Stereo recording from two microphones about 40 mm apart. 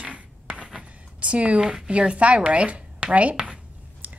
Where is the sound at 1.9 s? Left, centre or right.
Right.